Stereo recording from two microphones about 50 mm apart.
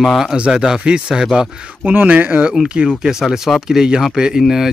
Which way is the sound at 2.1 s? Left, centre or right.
Right.